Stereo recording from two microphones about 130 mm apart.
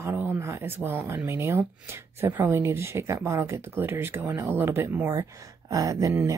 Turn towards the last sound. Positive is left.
turn(degrees=-25)  # may be behind; listen again after turning